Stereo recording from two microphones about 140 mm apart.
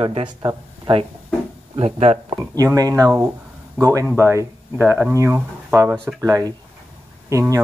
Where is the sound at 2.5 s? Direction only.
25° right (ahead or behind).